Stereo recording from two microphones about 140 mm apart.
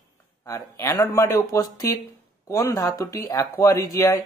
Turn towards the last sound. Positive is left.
turn(degrees=25)  # may be behind; listen again after turning